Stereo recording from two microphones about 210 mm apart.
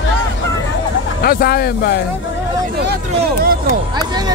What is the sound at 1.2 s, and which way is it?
Speech, 45° left (ahead or behind).